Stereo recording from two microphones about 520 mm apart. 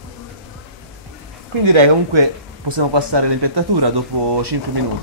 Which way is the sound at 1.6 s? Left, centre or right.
Right.